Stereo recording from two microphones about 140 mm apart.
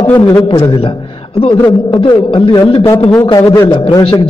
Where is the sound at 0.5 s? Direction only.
35° left (ahead or behind).